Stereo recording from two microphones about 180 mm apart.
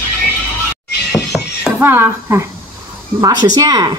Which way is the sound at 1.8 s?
15° right (ahead or behind).